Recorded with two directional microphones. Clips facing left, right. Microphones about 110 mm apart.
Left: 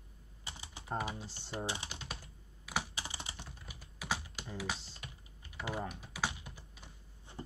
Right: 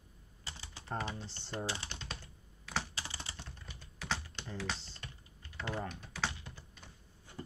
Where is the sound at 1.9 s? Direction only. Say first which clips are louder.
Even; 5° left (ahead or behind).